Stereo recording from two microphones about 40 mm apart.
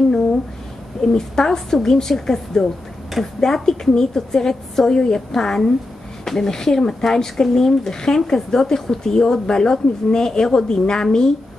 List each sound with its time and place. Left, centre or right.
1.0 s speech: centre